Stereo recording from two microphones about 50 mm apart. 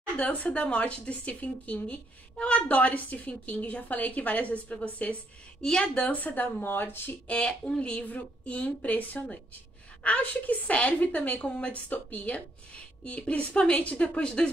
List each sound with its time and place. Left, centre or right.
0.2 s speech: left
5.6 s speech: centre
6.2 s speech: left
7.2 s speech: centre